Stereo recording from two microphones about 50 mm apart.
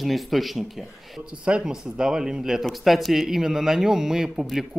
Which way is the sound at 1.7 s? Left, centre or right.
Centre.